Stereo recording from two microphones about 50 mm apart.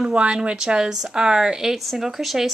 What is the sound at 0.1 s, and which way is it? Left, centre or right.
Speech, right.